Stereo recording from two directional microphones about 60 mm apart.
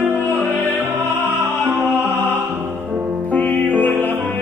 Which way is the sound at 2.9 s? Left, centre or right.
Right.